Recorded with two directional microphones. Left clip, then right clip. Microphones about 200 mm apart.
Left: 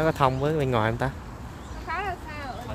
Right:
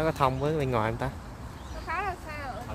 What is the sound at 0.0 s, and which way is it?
Speech, 15° left (ahead or behind).